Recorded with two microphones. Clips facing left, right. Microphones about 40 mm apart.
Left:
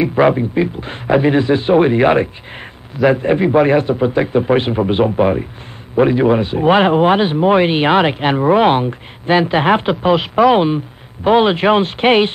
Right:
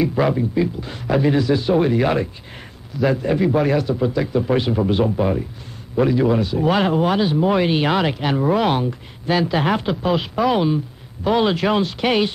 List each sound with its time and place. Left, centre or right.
0.0 s speech: left